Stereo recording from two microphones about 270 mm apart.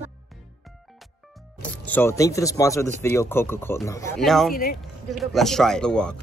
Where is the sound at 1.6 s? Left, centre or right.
Centre.